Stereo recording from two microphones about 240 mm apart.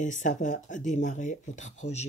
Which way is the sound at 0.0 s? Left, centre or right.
Left.